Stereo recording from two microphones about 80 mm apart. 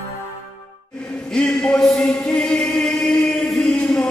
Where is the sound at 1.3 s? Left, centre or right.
Centre.